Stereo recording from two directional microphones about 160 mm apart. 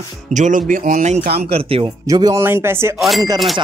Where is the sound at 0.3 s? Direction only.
50° right (ahead or behind).